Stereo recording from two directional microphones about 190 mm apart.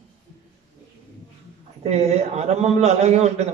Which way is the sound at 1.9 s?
35° right (ahead or behind).